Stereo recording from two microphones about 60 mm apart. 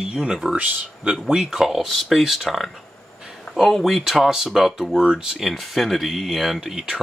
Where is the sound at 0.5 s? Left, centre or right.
Right.